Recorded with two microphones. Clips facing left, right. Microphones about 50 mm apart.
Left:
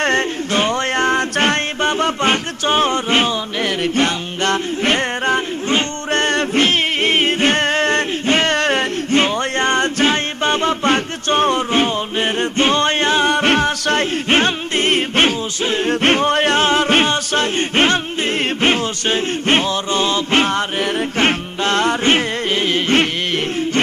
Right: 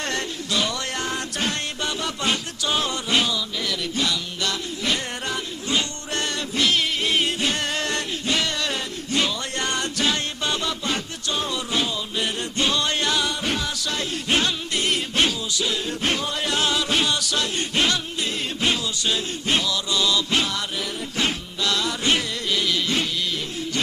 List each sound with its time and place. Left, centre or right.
0.0 s music: left
13.3 s music: left
18.6 s a sound: left